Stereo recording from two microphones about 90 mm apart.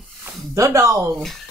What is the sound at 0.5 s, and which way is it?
Speech, 35° right (ahead or behind).